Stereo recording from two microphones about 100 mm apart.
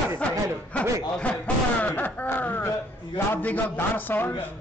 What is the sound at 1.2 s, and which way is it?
A man's voice, 15° left (ahead or behind).